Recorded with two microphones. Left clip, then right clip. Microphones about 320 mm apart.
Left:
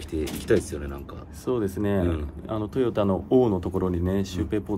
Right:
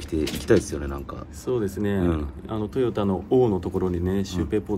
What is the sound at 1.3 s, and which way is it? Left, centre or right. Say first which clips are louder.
A man's voice: even; left.